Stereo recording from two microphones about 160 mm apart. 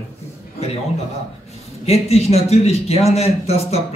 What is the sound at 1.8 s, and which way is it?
A man's voice, 40° left (ahead or behind).